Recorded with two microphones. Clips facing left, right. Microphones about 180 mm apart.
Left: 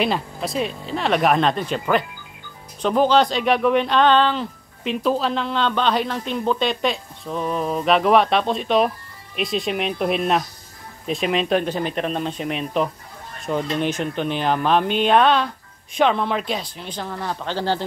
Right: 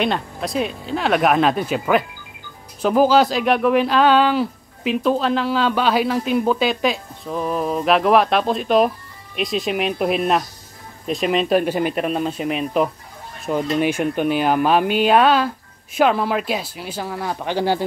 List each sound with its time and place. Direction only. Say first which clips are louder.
0.0 s speech: right 1 dB; centre (ahead or behind)